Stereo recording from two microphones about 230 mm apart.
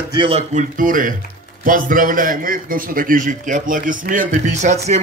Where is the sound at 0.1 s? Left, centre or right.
Right.